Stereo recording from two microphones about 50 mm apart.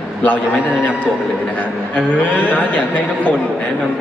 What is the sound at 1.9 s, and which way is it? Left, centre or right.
A man's voice, left.